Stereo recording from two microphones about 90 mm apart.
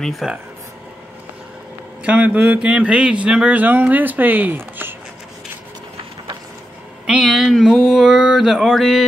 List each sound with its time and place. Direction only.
0.0 s mantra: centre (ahead or behind)
2.0 s speech: 15° right (ahead or behind)
7.1 s mantra: 5° right (ahead or behind)